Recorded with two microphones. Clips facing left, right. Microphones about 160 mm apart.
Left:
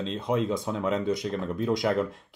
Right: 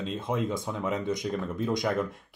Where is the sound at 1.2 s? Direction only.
Centre (ahead or behind).